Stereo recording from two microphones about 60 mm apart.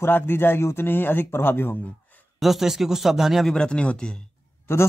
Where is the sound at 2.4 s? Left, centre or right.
Centre.